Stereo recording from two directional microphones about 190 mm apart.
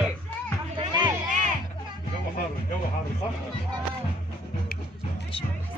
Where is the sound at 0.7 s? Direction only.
25° right (ahead or behind).